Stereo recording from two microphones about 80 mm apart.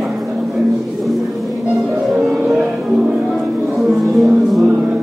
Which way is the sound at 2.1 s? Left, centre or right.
Centre.